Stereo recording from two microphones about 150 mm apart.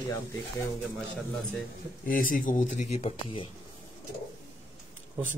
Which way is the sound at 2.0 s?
65° left (ahead or behind).